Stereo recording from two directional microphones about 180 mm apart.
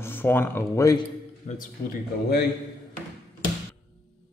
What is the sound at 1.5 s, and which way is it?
Speech, 40° left (ahead or behind).